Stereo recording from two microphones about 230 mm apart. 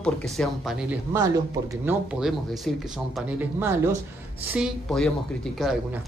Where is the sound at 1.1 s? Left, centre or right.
Centre.